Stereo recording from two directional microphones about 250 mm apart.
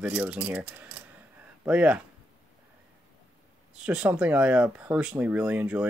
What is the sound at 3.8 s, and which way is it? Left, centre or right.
Speech, centre.